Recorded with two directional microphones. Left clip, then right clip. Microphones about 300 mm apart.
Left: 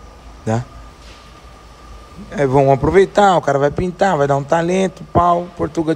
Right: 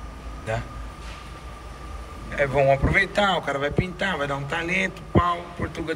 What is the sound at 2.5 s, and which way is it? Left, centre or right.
Speech, centre.